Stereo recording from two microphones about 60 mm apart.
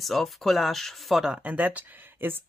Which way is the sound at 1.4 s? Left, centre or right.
Right.